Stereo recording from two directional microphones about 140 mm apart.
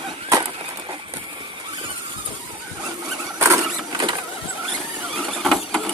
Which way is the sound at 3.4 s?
20° right (ahead or behind).